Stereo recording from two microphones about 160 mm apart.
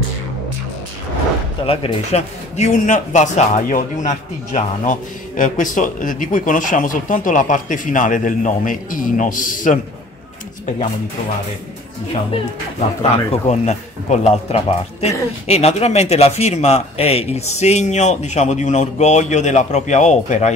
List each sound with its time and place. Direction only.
1.7 s speech: 40° left (ahead or behind); by 9.8 s 55° left (ahead or behind)
13.0 s speech: 45° left (ahead or behind)